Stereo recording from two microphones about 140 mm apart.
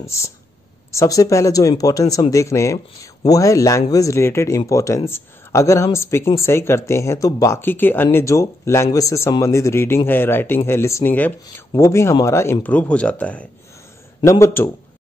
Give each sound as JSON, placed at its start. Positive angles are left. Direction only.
{"t": 0.9, "sound": "speech", "side_deg": 25}
{"t": 14.2, "sound": "speech", "side_deg": 20}